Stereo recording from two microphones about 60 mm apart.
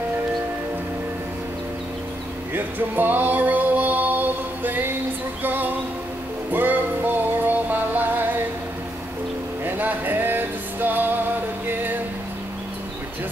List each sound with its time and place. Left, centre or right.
2.5 s music: right
9.7 s music: right